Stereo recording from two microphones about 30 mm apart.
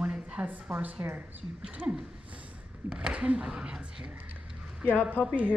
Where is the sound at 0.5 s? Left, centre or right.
Right.